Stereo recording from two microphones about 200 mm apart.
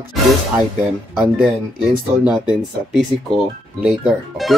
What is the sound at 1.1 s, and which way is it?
Speech, 5° right (ahead or behind).